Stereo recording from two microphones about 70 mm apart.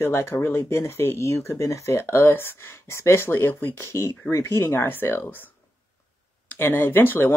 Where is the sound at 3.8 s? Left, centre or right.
Left.